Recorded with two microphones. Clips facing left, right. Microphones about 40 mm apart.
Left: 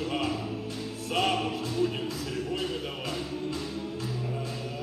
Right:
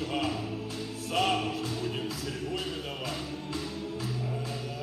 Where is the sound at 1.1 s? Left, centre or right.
Centre.